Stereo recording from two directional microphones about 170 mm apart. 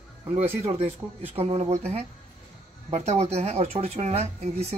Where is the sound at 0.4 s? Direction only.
35° right (ahead or behind).